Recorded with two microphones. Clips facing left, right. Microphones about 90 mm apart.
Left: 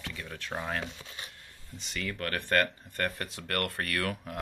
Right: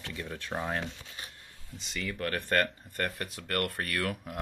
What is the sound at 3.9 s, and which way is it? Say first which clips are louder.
Speech: even; 5° right (ahead or behind).